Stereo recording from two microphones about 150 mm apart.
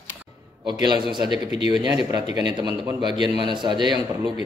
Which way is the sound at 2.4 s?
30° right (ahead or behind).